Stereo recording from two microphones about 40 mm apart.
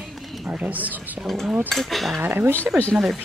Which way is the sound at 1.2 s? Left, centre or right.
Centre.